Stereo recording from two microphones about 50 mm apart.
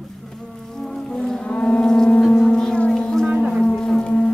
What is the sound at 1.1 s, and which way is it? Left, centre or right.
Livestock, centre.